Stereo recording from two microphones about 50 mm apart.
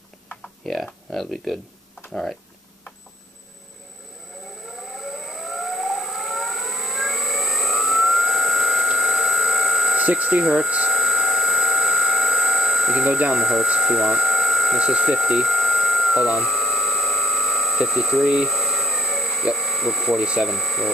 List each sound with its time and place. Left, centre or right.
0.7 s speech: centre
2.0 s speech: centre
4.7 s civil defense siren: centre
9.9 s speech: centre
10.4 s speech: centre
10.9 s a sound: centre
13.3 s speech: centre
13.7 s a sound: centre
14.8 s a sound: centre
17.7 s speech: centre
18.5 s a sound: centre
20.4 s speech: centre